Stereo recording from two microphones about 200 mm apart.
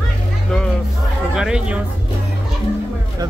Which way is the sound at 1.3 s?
5° right (ahead or behind).